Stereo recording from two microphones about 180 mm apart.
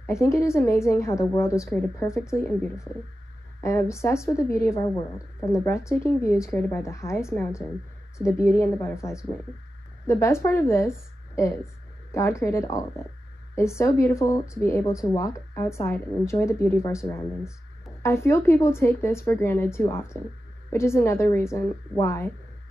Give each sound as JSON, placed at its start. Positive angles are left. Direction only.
{"t": 0.0, "sound": "a woman's voice", "side_deg": 15}